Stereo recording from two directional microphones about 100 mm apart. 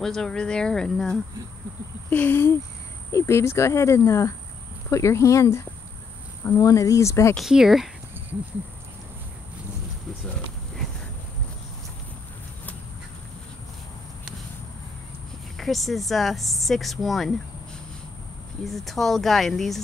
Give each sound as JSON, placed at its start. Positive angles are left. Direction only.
{"t": 0.0, "sound": "speech", "side_deg": 5}
{"t": 2.0, "sound": "speech", "side_deg": 20}
{"t": 7.3, "sound": "speech", "side_deg": -5}
{"t": 15.5, "sound": "speech", "side_deg": 0}
{"t": 18.6, "sound": "speech", "side_deg": 0}